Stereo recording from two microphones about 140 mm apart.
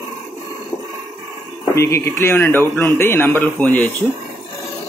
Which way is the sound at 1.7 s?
20° left (ahead or behind).